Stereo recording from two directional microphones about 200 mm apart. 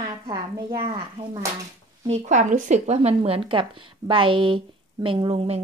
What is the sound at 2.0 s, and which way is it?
Speech, 35° right (ahead or behind).